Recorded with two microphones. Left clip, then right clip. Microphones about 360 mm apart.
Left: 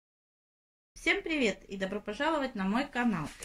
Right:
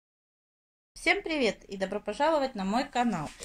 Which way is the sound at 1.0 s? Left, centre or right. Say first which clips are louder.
Right 3 dB; centre.